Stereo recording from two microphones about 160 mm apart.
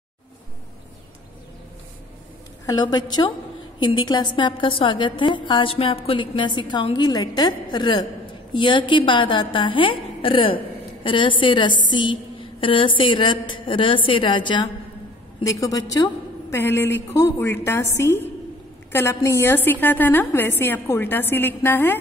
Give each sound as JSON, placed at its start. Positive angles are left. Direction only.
{"t": 2.6, "sound": "a woman's voice", "side_deg": 25}